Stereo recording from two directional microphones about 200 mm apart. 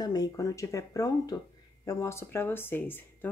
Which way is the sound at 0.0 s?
20° left (ahead or behind).